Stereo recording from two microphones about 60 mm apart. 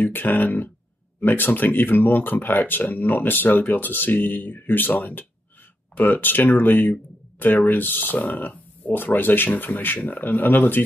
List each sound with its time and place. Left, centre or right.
0.0 s speech: left